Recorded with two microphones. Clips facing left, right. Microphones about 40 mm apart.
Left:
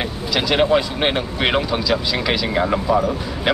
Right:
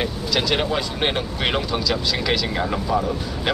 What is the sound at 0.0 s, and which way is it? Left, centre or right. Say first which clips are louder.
Speech: left 1 dB; centre.